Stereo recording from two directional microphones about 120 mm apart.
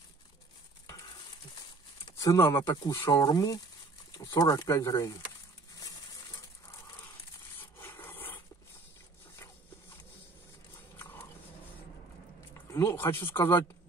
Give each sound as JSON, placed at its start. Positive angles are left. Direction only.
{"t": 2.0, "sound": "speech", "side_deg": 30}
{"t": 7.7, "sound": "rub", "side_deg": 20}
{"t": 11.0, "sound": "dog", "side_deg": 20}
{"t": 12.7, "sound": "speech", "side_deg": 20}